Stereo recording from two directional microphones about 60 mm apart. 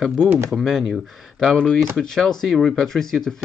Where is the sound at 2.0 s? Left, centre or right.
Centre.